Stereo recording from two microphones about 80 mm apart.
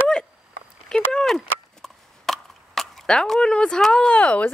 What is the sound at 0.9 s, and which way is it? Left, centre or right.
Speech, centre.